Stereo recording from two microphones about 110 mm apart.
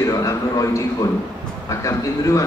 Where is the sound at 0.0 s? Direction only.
30° left (ahead or behind).